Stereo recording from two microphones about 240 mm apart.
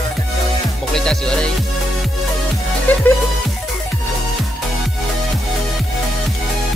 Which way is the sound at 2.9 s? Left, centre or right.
Centre.